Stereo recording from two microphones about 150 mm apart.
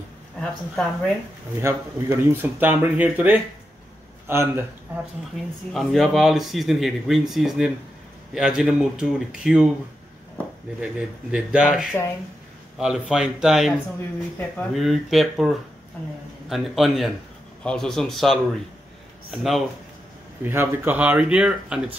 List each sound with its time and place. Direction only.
0.4 s speech: 5° left (ahead or behind)
1.6 s speech: 20° right (ahead or behind)
5.7 s speech: centre (ahead or behind)
11.3 s speech: 5° right (ahead or behind)
20.4 s speech: 15° right (ahead or behind)